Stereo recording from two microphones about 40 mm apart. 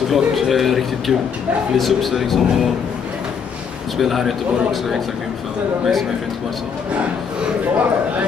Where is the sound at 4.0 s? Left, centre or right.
Centre.